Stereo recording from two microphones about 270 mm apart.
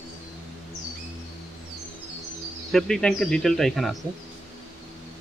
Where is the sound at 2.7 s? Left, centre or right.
Centre.